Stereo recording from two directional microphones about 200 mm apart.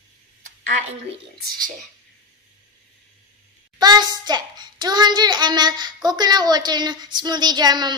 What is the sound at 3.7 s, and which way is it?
A child's voice, 20° right (ahead or behind).